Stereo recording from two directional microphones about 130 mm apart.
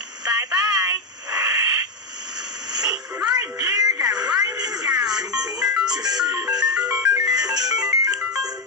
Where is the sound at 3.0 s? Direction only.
5° right (ahead or behind).